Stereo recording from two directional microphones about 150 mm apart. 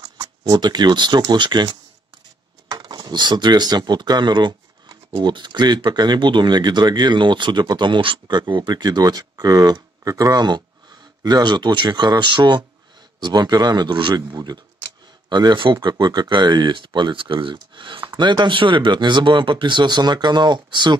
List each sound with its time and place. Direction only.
0.5 s speech: 30° right (ahead or behind)